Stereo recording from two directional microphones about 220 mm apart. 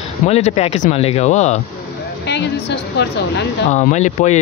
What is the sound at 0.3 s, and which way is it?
A man's voice, 30° left (ahead or behind).